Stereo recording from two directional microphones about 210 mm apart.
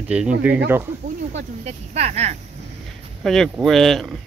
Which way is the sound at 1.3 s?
30° right (ahead or behind).